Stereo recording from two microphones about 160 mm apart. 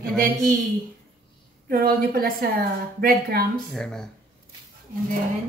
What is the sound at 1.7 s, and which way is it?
A woman's voice, 65° right (ahead or behind).